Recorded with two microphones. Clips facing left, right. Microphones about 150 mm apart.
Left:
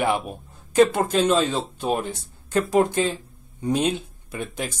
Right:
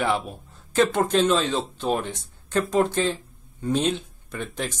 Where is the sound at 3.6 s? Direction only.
10° left (ahead or behind).